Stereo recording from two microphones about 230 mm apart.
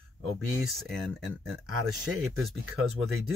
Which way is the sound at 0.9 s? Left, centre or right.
Centre.